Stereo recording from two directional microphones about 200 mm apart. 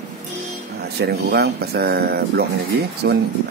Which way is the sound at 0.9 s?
55° right (ahead or behind).